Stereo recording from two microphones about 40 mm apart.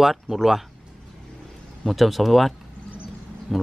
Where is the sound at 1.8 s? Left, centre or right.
Centre.